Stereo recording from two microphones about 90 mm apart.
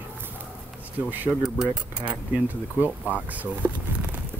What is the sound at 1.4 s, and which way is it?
Speech, 10° right (ahead or behind).